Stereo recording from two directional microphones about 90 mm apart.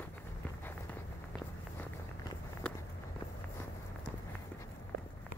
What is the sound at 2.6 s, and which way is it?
Walk, 15° left (ahead or behind).